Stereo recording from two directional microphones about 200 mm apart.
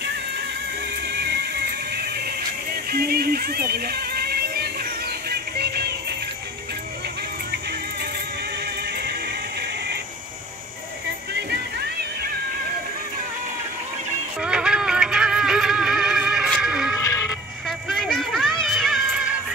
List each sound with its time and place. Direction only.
1.9 s music: 50° right (ahead or behind)
8.8 s music: 55° right (ahead or behind)
14.4 s music: 5° right (ahead or behind)
17.0 s sheep: 15° left (ahead or behind)
17.6 s a sound: centre (ahead or behind)